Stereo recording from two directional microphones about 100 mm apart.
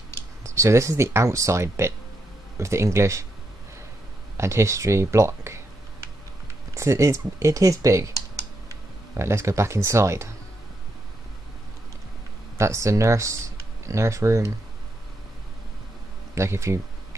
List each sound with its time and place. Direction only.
0.4 s speech: 30° right (ahead or behind)
4.4 s speech: 30° right (ahead or behind)
6.7 s speech: 30° right (ahead or behind)
9.1 s speech: 30° right (ahead or behind)
12.5 s speech: 30° right (ahead or behind)
16.3 s speech: 30° right (ahead or behind)